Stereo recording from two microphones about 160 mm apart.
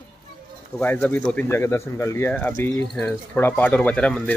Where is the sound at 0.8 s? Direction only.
10° left (ahead or behind).